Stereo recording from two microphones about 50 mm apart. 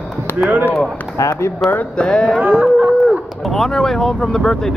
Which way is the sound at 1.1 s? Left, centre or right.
Left.